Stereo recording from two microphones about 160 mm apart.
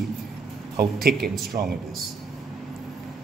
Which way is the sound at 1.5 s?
30° right (ahead or behind).